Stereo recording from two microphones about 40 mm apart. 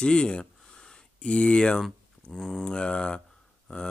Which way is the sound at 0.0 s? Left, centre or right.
Left.